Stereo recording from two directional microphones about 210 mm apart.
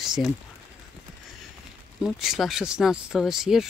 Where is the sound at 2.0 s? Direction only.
Centre (ahead or behind).